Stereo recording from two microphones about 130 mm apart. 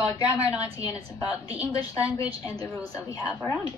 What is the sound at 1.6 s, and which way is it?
A woman's voice, 25° left (ahead or behind).